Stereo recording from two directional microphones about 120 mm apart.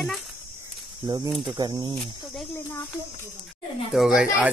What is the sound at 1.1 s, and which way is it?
Speech, 35° right (ahead or behind).